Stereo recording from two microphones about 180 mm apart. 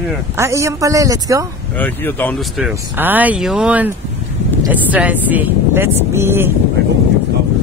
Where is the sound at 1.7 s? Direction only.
10° left (ahead or behind).